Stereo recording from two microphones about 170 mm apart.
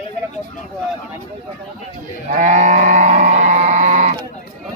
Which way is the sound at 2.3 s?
45° right (ahead or behind).